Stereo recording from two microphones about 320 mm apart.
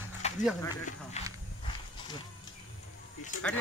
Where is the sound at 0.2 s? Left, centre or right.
Left.